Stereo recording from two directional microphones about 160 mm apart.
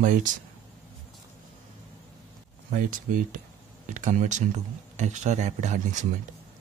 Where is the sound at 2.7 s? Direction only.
55° right (ahead or behind).